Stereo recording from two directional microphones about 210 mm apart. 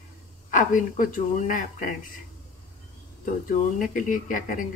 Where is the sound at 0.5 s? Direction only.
40° left (ahead or behind).